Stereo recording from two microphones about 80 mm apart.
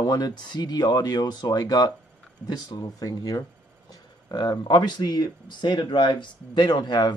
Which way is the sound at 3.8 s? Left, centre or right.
Left.